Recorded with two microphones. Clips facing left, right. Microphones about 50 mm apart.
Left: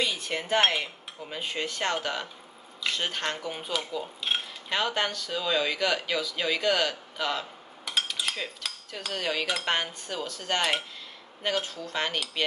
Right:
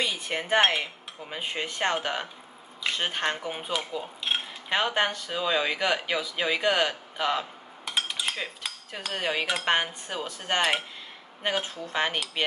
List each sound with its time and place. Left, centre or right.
0.0 s speech: centre
2.8 s cutlery: centre
4.6 s speech: right
8.2 s cutlery: centre